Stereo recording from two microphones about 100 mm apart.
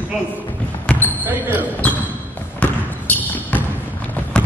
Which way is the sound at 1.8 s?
15° left (ahead or behind).